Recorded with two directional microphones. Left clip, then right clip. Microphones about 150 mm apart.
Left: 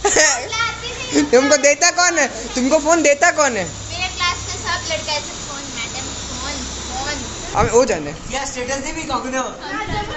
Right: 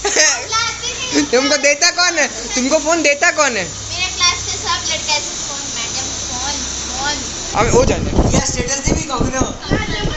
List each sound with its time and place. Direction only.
0.0 s children playing: 25° left (ahead or behind)
1.1 s speech: 20° left (ahead or behind)
7.6 s speech: 5° left (ahead or behind)